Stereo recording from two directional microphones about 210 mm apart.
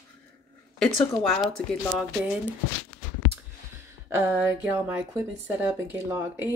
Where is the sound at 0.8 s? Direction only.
5° left (ahead or behind).